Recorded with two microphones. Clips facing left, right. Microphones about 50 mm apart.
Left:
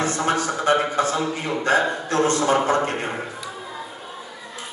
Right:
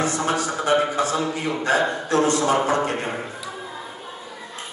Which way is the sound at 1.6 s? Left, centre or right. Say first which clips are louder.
Left 2 dB; left.